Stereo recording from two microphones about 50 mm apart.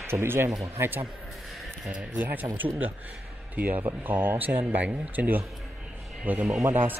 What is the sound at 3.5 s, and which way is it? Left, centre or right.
Speech, right.